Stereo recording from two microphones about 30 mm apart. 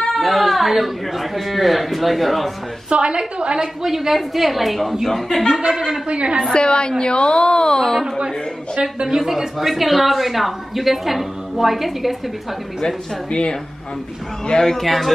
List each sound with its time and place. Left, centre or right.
0.1 s a woman's voice: centre
2.9 s a woman's voice: right
3.5 s a woman's voice: centre
5.6 s speech: right
6.0 s a woman's voice: right
6.5 s a woman's voice: left
8.8 s speech: centre
9.6 s a woman's voice: centre
13.3 s a woman's voice: left
14.4 s speech: left
14.8 s a woman's voice: centre